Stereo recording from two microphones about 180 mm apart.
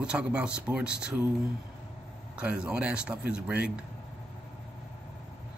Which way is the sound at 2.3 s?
5° right (ahead or behind).